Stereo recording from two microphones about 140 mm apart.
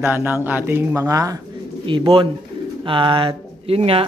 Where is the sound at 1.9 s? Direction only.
40° right (ahead or behind).